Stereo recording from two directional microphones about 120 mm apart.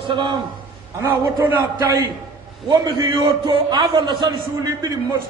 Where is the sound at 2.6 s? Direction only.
35° right (ahead or behind).